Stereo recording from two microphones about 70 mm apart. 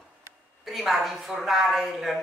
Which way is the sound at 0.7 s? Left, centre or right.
Centre.